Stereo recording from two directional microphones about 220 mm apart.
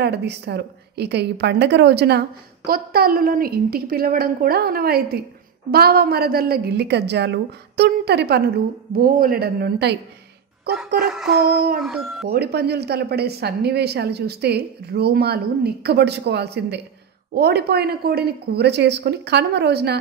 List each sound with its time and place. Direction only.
0.0 s a woman's voice: 50° right (ahead or behind)
11.1 s speech: 5° right (ahead or behind)
11.4 s a woman's voice: 45° right (ahead or behind)
11.8 s speech: centre (ahead or behind)
12.3 s a woman's voice: 45° right (ahead or behind)